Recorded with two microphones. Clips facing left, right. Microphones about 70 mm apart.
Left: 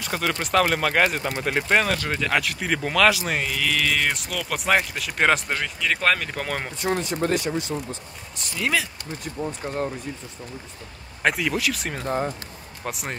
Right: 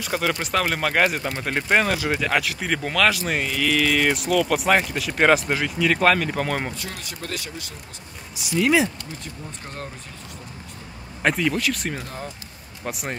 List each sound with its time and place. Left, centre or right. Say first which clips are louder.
0.0 s speech: right 2 dB; centre
6.8 s speech: left 10 dB; left
8.4 s speech: right 7 dB; centre
11.2 s speech: right 1 dB; centre